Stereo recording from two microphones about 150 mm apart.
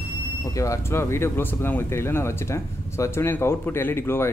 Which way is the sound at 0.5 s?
20° left (ahead or behind).